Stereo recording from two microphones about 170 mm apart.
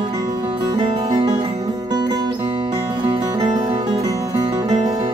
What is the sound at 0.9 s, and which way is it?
Music, 35° right (ahead or behind).